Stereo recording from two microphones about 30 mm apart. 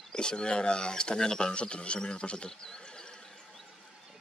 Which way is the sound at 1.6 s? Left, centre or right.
Left.